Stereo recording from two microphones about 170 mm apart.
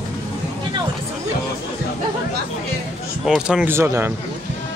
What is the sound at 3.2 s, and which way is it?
Speech, 5° right (ahead or behind).